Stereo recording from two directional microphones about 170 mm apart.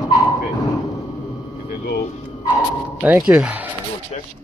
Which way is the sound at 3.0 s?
10° right (ahead or behind).